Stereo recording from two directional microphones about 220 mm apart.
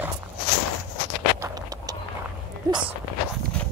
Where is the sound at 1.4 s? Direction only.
15° right (ahead or behind).